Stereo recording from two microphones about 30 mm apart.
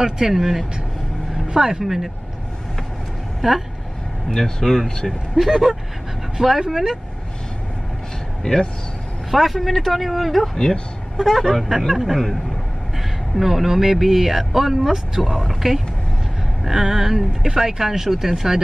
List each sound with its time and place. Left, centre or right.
0.0 s speech: centre
0.4 s speech: centre
1.5 s speech: centre
3.3 s speech: centre
4.3 s speech: centre
5.3 s speech: centre
8.4 s speech: centre
9.3 s speech: centre
10.5 s speech: centre
11.1 s speech: centre
13.4 s speech: centre
17.3 s speech: right